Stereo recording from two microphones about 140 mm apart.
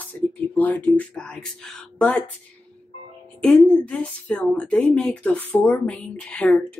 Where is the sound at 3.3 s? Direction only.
10° left (ahead or behind).